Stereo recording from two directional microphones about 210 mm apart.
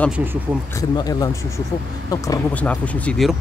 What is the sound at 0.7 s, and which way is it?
Speech, 15° left (ahead or behind).